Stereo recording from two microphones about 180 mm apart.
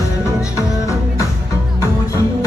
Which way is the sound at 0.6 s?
15° left (ahead or behind).